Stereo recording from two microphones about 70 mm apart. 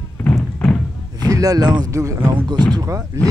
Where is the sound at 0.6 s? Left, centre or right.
Centre.